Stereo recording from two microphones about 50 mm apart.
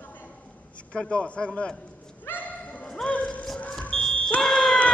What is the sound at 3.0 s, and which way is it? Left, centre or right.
Music, left.